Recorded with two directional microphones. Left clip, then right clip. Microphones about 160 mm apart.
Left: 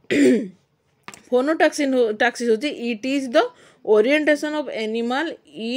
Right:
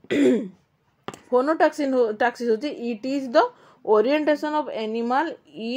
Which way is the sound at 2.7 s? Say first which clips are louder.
Left 3 dB; 15° left (ahead or behind).